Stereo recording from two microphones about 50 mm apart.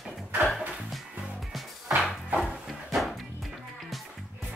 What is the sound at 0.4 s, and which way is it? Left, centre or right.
Music, centre.